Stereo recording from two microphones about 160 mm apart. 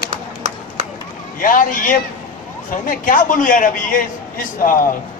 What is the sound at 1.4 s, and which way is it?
A man's voice, 60° left (ahead or behind).